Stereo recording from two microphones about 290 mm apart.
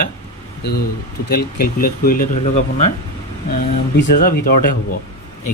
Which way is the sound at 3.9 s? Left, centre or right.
Left.